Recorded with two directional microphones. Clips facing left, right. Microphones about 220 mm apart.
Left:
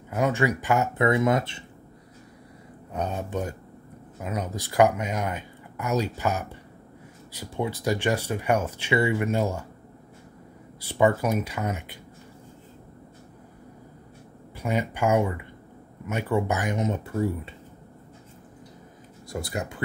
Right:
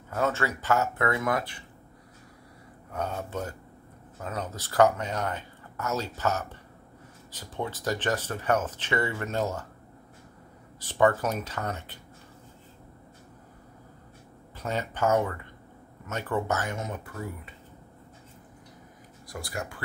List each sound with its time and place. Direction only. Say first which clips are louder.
0.1 s speech: left 4 dB; 15° left (ahead or behind)
2.9 s speech: left 3 dB; 20° left (ahead or behind)
10.8 s speech: left 2 dB; 10° left (ahead or behind)
14.6 s speech: left 3 dB; 10° left (ahead or behind); by 17.6 s 25° left (ahead or behind)
19.2 s speech: left 5 dB; 25° left (ahead or behind)